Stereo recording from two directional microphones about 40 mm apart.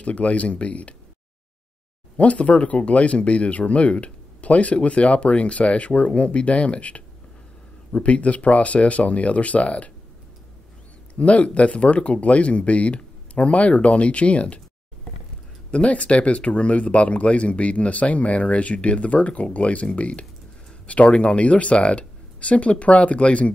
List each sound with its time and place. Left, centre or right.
0.0 s speech: left
2.1 s speech: left
11.1 s speech: left
15.7 s speech: left